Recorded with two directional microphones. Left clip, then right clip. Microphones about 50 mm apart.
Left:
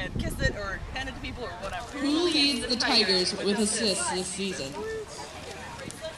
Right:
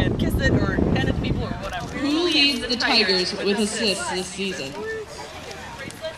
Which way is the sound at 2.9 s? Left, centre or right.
Left.